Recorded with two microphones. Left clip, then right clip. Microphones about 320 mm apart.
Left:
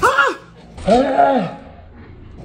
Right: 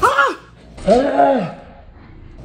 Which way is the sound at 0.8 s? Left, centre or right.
Right.